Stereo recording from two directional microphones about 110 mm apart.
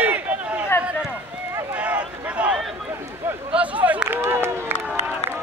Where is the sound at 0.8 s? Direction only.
10° right (ahead or behind).